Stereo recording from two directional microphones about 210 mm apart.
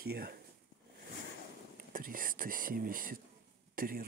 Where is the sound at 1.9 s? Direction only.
40° right (ahead or behind).